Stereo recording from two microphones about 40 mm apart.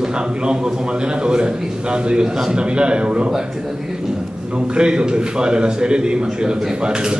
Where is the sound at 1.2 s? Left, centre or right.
Right.